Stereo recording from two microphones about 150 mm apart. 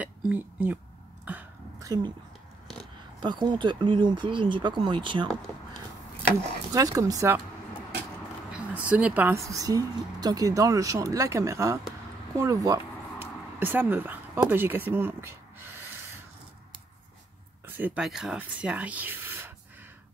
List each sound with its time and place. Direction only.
0.0 s a sound: 10° right (ahead or behind)
1.8 s speech: 25° right (ahead or behind)
3.2 s speech: 30° right (ahead or behind)
6.7 s speech: 25° right (ahead or behind)
8.5 s speech: 10° right (ahead or behind)
12.4 s a sound: 20° right (ahead or behind)
17.6 s speech: 10° right (ahead or behind)